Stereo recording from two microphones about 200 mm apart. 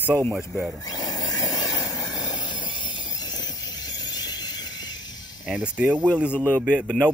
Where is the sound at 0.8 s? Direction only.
20° left (ahead or behind).